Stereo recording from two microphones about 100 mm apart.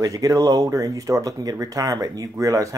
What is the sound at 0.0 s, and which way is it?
Speech, 35° right (ahead or behind).